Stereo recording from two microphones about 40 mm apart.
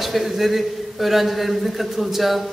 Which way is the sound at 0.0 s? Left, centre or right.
Centre.